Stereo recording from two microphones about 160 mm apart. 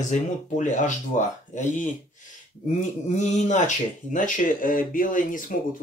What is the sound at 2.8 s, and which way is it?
Speech, 50° left (ahead or behind).